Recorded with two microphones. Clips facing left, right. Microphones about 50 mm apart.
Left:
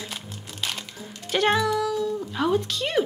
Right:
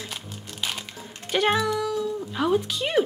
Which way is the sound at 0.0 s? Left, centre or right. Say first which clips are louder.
Even; centre.